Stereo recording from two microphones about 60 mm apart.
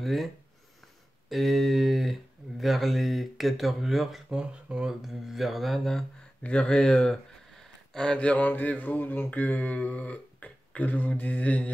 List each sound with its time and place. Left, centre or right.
0.0 s speech: centre
1.3 s speech: centre
4.4 s speech: centre
5.0 s speech: centre
6.4 s speech: centre